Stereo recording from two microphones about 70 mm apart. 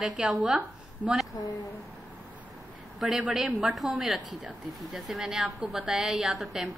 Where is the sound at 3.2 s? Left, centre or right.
Centre.